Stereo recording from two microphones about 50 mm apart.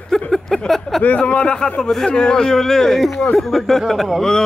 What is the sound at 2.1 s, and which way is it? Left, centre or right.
A man's voice, centre.